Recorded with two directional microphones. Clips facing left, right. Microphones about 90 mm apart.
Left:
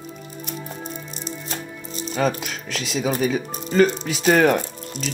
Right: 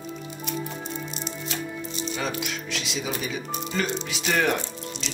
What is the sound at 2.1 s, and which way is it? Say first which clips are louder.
Speech: left 9 dB; 40° left (ahead or behind).